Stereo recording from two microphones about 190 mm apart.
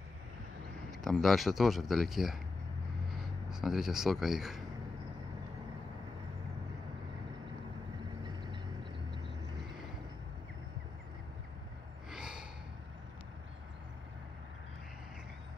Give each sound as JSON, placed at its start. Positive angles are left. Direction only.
{"t": 1.0, "sound": "speech", "side_deg": 0}
{"t": 8.2, "sound": "vehicle", "side_deg": -25}
{"t": 12.1, "sound": "gasp", "side_deg": -5}